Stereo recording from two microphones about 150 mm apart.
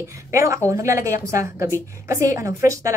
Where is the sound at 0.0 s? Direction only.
20° right (ahead or behind).